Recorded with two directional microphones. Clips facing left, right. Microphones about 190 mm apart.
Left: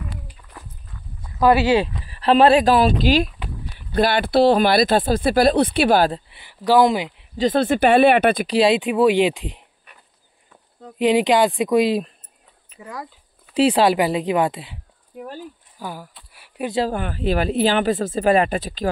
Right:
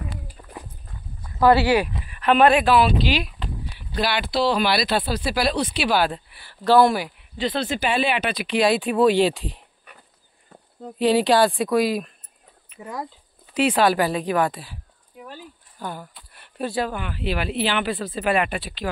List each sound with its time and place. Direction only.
0.4 s dog: 40° right (ahead or behind)
1.2 s speech: 15° left (ahead or behind)
2.0 s speech: 30° left (ahead or behind)
6.3 s speech: 15° left (ahead or behind)
7.3 s speech: 45° left (ahead or behind)
8.5 s speech: 30° left (ahead or behind)
8.7 s speech: 15° left (ahead or behind)
11.0 s speech: 15° left (ahead or behind)
12.8 s speech: 25° right (ahead or behind)
13.5 s speech: 30° left (ahead or behind)
15.1 s a sound: 45° left (ahead or behind)
15.8 s speech: 5° left (ahead or behind)
16.9 s speech: 45° left (ahead or behind)